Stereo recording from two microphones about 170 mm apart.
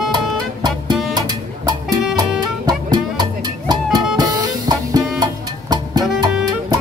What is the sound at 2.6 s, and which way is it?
Music, 25° right (ahead or behind).